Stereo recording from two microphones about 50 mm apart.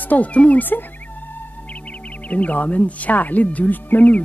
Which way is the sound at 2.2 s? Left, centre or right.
Left.